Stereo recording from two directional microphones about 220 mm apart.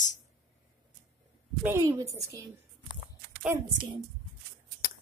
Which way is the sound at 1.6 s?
10° right (ahead or behind).